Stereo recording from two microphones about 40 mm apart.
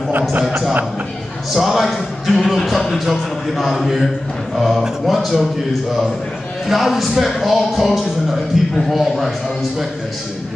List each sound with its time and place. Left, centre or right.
0.3 s speech: right
1.5 s speech: centre
6.7 s speech: centre